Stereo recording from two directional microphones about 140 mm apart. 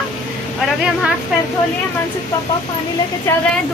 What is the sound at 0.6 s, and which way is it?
Speech, 5° right (ahead or behind).